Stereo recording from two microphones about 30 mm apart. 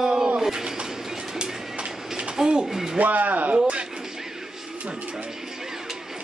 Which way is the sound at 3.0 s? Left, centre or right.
Right.